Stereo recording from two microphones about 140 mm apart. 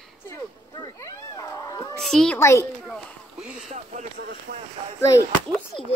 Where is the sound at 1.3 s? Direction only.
25° left (ahead or behind).